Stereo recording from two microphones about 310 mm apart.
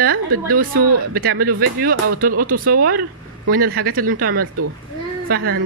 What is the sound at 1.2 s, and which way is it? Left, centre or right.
Speech, right.